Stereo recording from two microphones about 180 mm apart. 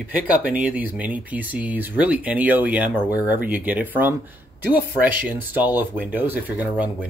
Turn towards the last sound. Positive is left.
turn(degrees=-10)  # may be behind; listen again after turning